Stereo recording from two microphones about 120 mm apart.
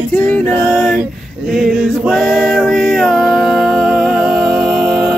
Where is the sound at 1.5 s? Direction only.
5° right (ahead or behind).